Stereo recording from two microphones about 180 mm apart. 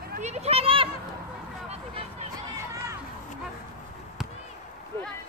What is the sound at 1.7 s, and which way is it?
Vehicle, 35° right (ahead or behind).